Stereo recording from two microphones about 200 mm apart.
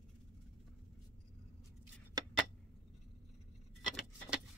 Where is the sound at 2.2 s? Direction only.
20° right (ahead or behind).